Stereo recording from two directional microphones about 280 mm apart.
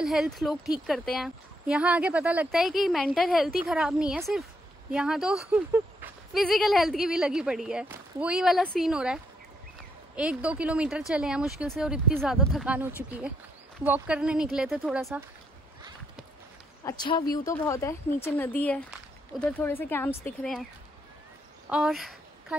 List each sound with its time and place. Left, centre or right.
0.0 s speech: centre
16.8 s speech: centre
17.2 s speech: left
17.5 s speech: centre
21.6 s a sound: centre